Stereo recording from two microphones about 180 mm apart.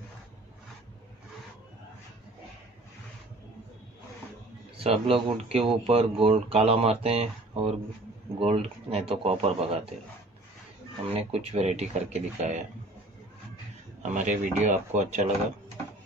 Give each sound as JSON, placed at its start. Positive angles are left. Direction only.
{"t": 4.7, "sound": "speech", "side_deg": -30}
{"t": 11.1, "sound": "speech", "side_deg": -35}
{"t": 14.1, "sound": "speech", "side_deg": -40}